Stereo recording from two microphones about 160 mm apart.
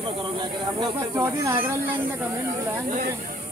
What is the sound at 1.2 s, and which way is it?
Speech, 15° right (ahead or behind).